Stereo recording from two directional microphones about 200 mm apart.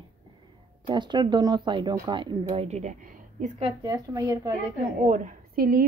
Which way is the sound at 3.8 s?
15° right (ahead or behind).